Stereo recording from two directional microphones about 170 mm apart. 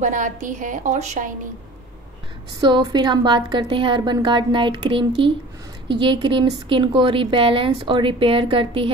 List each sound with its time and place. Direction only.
0.0 s a woman's voice: 45° right (ahead or behind)
2.6 s a woman's voice: 25° right (ahead or behind)